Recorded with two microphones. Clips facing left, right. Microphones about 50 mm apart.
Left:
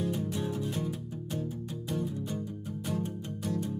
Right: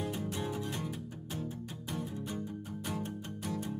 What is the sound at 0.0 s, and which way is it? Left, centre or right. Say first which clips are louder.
Music: left 4 dB; centre.